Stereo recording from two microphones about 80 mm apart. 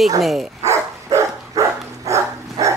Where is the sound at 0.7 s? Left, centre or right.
Right.